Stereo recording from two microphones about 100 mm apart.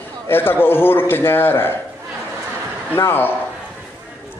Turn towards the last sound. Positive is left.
turn(degrees=20)  # may be behind; listen again after turning